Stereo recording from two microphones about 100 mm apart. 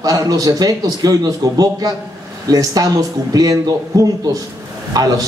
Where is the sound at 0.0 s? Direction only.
40° right (ahead or behind).